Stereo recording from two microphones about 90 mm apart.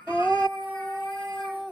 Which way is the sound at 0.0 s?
60° left (ahead or behind).